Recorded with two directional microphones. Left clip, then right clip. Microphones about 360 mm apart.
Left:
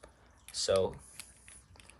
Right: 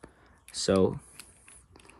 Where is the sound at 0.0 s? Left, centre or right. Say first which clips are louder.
Right 3 dB; right.